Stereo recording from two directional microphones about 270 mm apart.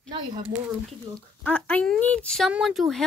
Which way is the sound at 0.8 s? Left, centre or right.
Centre.